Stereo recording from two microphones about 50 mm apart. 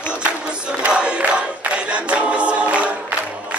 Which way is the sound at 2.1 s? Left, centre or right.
Right.